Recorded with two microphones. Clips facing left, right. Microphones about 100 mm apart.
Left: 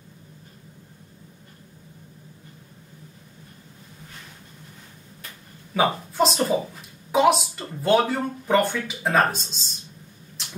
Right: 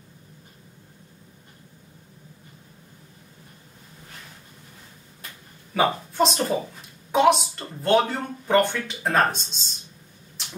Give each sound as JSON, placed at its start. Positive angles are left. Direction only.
{"t": 5.8, "sound": "speech", "side_deg": 0}